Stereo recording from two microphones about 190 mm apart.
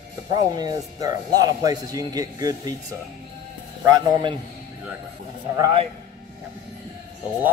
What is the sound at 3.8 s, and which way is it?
Speech, 20° right (ahead or behind).